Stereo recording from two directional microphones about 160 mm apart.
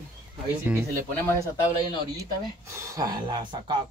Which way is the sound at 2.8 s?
20° right (ahead or behind).